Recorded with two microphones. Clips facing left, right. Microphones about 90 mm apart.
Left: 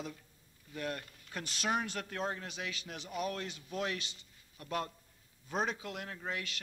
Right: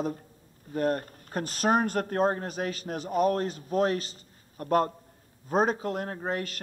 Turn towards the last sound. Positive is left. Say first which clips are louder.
# right 9 dB
turn(degrees=-45)  # may be behind; listen again after turning